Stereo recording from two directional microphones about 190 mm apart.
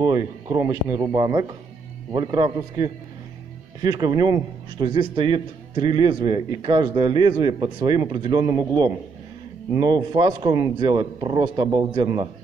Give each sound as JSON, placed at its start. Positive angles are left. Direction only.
{"t": 0.0, "sound": "a man's voice", "side_deg": -20}